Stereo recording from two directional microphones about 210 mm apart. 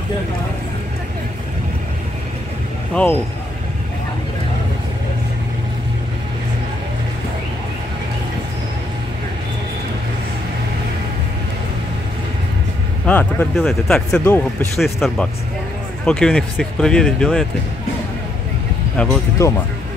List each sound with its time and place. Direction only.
2.9 s speech: 5° left (ahead or behind)
13.0 s speech: 5° left (ahead or behind)
14.8 s speech: centre (ahead or behind)
18.9 s speech: 15° left (ahead or behind)